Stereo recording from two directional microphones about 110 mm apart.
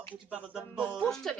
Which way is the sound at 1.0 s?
5° left (ahead or behind).